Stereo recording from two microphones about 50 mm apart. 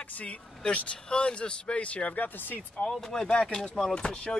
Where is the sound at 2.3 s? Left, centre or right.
Left.